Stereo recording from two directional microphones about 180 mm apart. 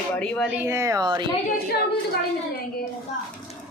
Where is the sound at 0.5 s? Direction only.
15° right (ahead or behind).